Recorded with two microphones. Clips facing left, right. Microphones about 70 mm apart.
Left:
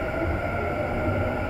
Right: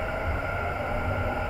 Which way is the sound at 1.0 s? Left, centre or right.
Centre.